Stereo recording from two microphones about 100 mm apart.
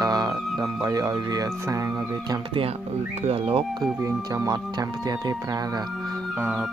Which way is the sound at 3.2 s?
85° right.